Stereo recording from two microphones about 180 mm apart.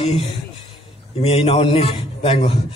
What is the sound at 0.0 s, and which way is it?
A man's voice, 35° left (ahead or behind).